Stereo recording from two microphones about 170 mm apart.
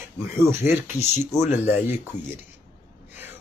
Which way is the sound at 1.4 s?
40° left (ahead or behind).